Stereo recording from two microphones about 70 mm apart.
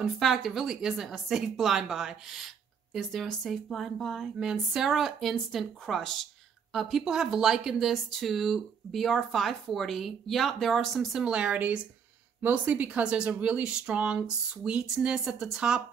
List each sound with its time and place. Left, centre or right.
0.0 s speech: centre
11.2 s speech: centre